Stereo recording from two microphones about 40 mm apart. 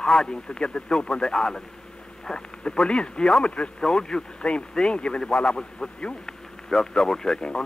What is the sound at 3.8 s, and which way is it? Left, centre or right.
Speech, centre.